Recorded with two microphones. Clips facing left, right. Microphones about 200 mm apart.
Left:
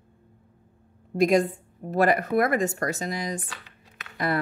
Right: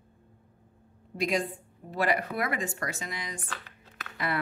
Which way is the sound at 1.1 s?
45° left (ahead or behind).